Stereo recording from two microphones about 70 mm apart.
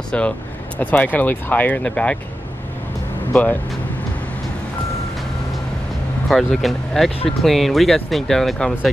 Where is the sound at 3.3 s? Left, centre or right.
Left.